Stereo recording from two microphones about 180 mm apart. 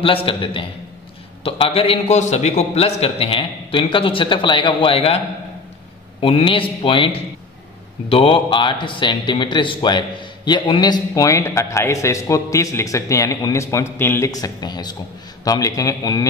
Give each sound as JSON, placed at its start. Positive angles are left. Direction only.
{"t": 0.0, "sound": "a man's voice", "side_deg": 30}
{"t": 6.2, "sound": "a man's voice", "side_deg": 30}